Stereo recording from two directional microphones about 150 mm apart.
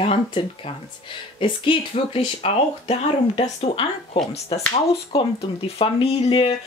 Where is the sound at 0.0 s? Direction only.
40° left (ahead or behind).